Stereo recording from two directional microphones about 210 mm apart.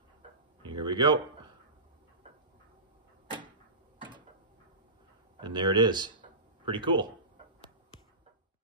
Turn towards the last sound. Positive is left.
turn(degrees=-25)  # may be behind; listen again after turning